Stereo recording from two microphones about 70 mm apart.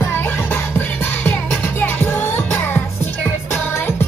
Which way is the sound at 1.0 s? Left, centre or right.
Left.